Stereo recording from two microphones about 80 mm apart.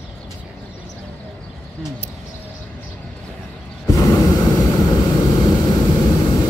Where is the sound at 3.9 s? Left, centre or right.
Left.